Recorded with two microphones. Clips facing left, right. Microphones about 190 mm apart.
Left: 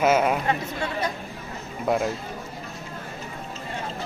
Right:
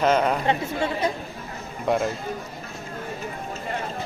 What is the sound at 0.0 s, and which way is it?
Speech, 5° left (ahead or behind).